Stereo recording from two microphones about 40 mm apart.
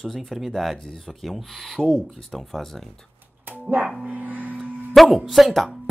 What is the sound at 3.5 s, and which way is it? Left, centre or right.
Dog, right.